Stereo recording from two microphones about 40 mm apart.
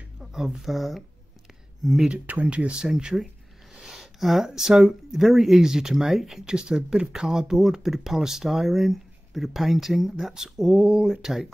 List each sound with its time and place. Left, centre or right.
0.2 s speech: centre
2.4 s speech: right
3.1 s speech: centre
3.8 s a sound: centre
4.5 s speech: centre